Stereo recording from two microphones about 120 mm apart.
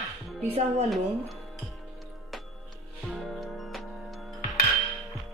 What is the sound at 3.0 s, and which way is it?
Music, centre (ahead or behind).